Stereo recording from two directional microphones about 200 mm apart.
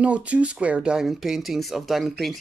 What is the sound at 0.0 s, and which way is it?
Speech, 5° right (ahead or behind).